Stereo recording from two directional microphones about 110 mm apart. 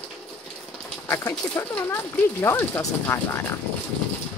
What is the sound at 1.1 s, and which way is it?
Speech, 25° left (ahead or behind).